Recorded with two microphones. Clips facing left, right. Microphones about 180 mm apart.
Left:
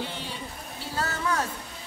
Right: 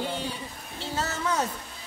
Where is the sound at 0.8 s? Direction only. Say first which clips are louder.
Even; 20° right (ahead or behind).